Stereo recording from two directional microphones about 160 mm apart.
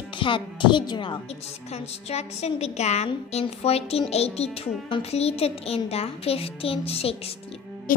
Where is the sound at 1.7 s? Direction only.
40° left (ahead or behind).